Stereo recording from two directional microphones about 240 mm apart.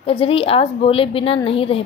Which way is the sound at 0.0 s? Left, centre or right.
Left.